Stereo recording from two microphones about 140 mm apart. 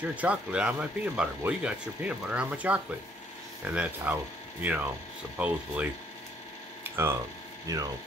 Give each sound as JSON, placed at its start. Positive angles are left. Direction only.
{"t": 0.0, "sound": "speech", "side_deg": -10}
{"t": 6.8, "sound": "a sound", "side_deg": -15}
{"t": 7.6, "sound": "speech", "side_deg": -25}